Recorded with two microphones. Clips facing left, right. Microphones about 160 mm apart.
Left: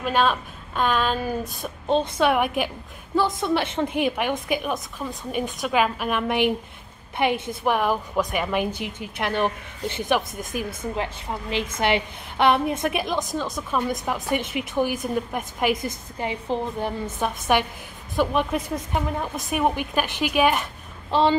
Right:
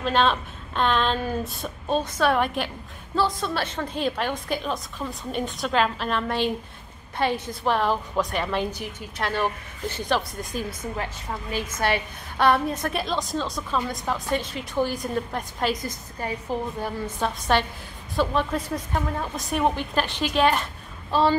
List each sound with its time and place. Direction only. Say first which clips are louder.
0.0 s a woman's voice: even; 10° left (ahead or behind)
16.2 s a woman's voice: left 2 dB; 20° left (ahead or behind)